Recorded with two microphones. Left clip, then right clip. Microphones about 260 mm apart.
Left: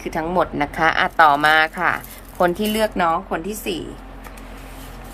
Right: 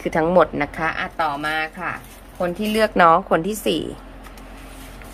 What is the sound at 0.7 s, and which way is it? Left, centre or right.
Speech, centre.